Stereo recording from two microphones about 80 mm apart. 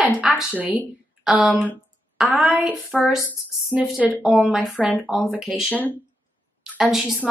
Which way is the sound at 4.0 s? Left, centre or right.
Centre.